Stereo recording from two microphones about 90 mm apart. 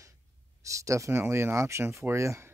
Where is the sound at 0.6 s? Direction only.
35° right (ahead or behind).